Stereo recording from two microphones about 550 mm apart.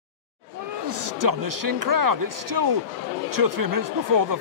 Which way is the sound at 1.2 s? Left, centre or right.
Right.